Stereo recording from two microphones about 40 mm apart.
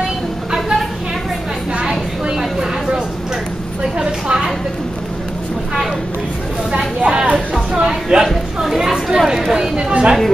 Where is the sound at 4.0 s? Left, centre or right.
Centre.